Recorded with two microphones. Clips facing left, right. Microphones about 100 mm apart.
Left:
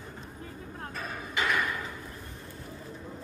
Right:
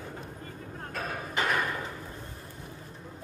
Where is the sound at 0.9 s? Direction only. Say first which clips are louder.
Right 2 dB; 50° right (ahead or behind).